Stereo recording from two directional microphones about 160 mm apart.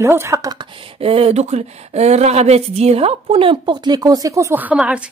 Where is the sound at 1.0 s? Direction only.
40° right (ahead or behind).